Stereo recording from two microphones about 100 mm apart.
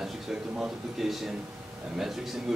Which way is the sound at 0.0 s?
5° right (ahead or behind).